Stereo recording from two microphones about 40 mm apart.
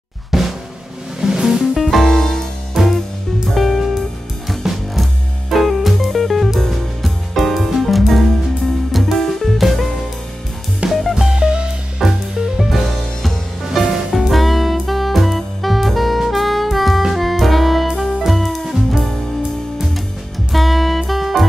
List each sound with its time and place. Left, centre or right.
0.3 s drum: centre
1.2 s music: centre
1.8 s music: centre
2.8 s music: centre
10.9 s music: centre
11.3 s music: right
12.0 s music: centre
14.2 s saxophone: centre
17.1 s music: centre
20.5 s music: centre